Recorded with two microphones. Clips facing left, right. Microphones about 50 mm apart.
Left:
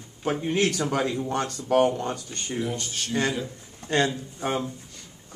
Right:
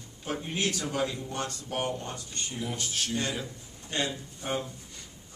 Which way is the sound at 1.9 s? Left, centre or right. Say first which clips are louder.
Left 7 dB; left.